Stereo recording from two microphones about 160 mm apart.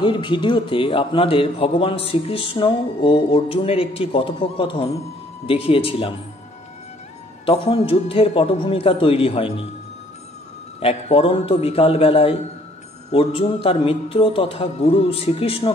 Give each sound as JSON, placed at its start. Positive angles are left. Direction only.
{"t": 0.0, "sound": "a man's voice", "side_deg": 30}
{"t": 7.4, "sound": "a man's voice", "side_deg": 35}
{"t": 10.8, "sound": "a man's voice", "side_deg": 40}